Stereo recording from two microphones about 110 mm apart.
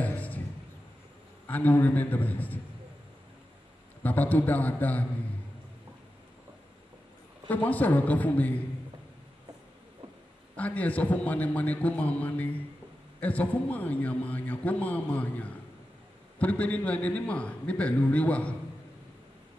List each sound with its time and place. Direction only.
0.0 s a sound: 15° left (ahead or behind)
1.5 s a man's voice: 15° left (ahead or behind)
4.0 s a man's voice: 15° left (ahead or behind)
7.4 s a man's voice: 15° left (ahead or behind)
10.5 s a man's voice: 15° left (ahead or behind)